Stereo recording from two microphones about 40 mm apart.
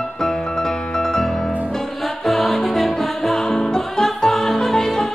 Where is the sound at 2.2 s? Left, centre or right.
Centre.